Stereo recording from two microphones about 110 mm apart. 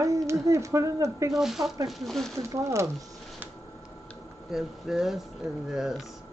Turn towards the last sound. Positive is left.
turn(degrees=-5)  # may be behind; listen again after turning